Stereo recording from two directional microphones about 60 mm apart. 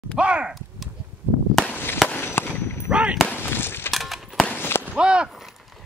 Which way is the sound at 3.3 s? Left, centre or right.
Left.